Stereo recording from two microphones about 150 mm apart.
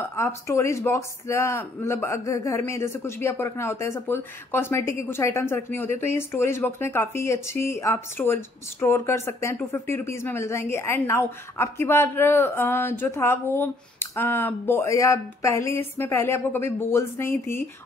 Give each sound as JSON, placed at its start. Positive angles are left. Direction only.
{"t": 0.0, "sound": "speech", "side_deg": 20}